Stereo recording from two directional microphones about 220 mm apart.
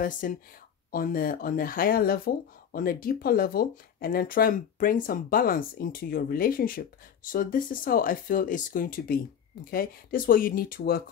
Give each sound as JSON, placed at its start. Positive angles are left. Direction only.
{"t": 0.0, "sound": "speech", "side_deg": 40}